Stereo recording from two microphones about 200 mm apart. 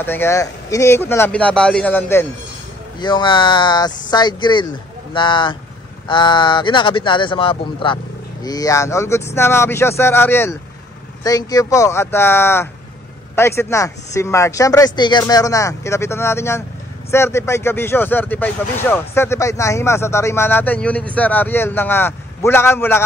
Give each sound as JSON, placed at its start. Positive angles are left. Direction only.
{"t": 0.0, "sound": "speech", "side_deg": 10}
{"t": 3.0, "sound": "speech", "side_deg": 20}